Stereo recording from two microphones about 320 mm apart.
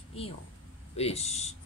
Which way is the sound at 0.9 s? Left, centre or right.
Centre.